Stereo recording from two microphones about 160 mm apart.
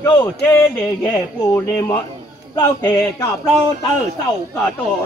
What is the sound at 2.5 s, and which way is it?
Speech, 15° left (ahead or behind).